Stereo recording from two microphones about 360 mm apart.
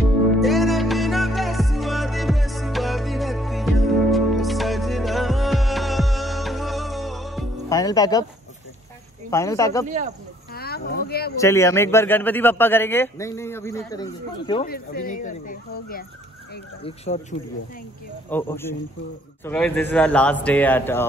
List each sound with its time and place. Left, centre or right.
0.4 s music: centre
7.8 s speech: centre
9.3 s a man's voice: centre
9.8 s speech: centre
10.5 s a sound: left
11.3 s a man's voice: centre
14.7 s a man's voice: left
18.3 s a man's voice: centre